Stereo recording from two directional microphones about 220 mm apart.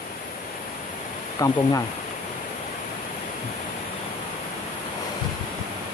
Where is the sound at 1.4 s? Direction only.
15° left (ahead or behind).